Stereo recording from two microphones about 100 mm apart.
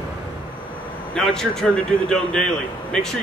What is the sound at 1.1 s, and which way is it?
A man's voice, 5° left (ahead or behind).